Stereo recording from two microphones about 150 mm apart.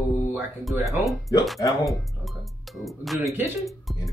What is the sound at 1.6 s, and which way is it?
Speech, 25° left (ahead or behind).